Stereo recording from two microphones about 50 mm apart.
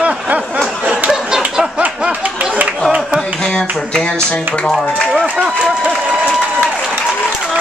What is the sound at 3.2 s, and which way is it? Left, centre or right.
Speech, centre.